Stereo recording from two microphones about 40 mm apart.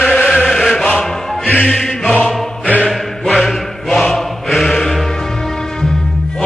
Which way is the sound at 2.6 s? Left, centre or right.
Left.